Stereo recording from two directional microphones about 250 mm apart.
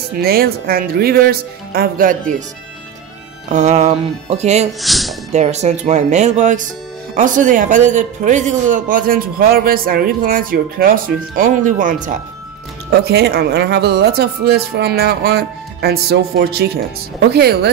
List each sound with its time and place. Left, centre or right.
0.2 s speech: right
3.4 s speech: right
4.8 s speech: centre
5.3 s speech: right